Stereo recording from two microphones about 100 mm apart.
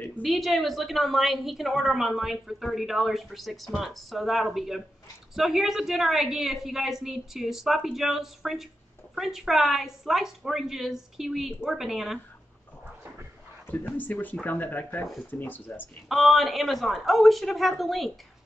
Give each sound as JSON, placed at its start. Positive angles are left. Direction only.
{"t": 0.2, "sound": "a woman's voice", "side_deg": 0}
{"t": 13.7, "sound": "speech", "side_deg": 15}
{"t": 16.1, "sound": "a woman's voice", "side_deg": 0}